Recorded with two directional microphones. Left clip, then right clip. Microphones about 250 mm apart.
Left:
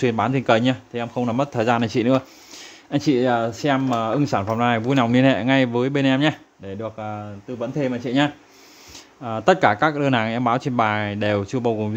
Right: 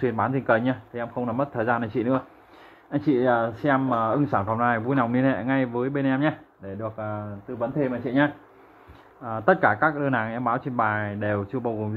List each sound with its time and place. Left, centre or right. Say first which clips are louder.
0.0 s speech: left 4 dB; left